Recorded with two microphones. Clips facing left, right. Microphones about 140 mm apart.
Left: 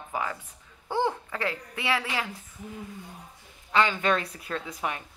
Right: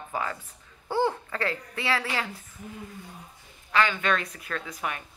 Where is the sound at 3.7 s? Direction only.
25° left (ahead or behind).